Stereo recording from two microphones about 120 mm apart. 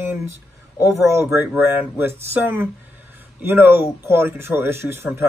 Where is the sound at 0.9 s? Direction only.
25° right (ahead or behind).